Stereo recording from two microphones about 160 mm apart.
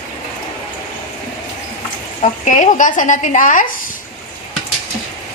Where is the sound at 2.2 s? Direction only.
50° left (ahead or behind).